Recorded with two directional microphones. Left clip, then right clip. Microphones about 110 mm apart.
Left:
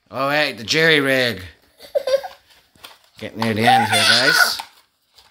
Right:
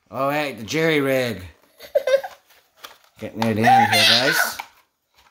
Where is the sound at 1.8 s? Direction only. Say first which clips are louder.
Even; 25° left (ahead or behind).